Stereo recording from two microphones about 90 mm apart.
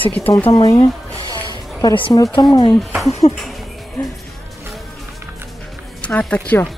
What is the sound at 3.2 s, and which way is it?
Speech, 90° left.